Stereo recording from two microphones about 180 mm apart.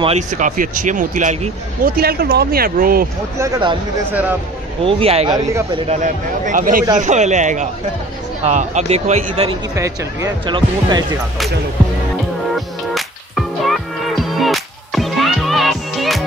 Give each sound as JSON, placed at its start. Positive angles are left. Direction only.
{"t": 0.4, "sound": "speech", "side_deg": -45}
{"t": 3.3, "sound": "speech", "side_deg": -20}
{"t": 4.8, "sound": "speech", "side_deg": -30}
{"t": 5.9, "sound": "speech", "side_deg": -45}
{"t": 9.8, "sound": "speech", "side_deg": -20}
{"t": 12.5, "sound": "music", "side_deg": 0}